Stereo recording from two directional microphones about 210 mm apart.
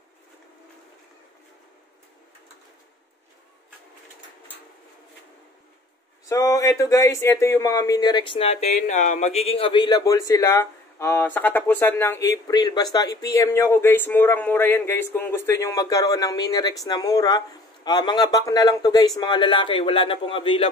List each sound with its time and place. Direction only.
6.2 s speech: 15° left (ahead or behind)